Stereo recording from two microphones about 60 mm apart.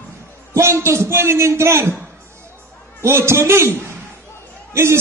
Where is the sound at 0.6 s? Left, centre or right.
Right.